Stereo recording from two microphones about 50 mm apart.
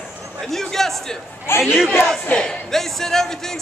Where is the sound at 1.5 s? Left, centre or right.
Left.